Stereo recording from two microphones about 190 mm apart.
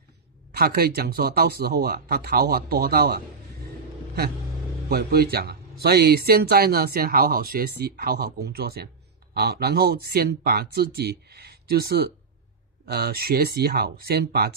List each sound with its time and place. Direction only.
0.5 s speech: 55° right (ahead or behind)
4.8 s speech: 55° right (ahead or behind)